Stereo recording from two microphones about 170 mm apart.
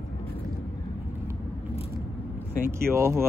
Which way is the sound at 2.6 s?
15° right (ahead or behind).